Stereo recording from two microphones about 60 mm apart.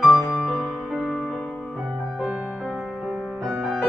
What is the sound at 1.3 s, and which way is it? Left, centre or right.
Music, centre.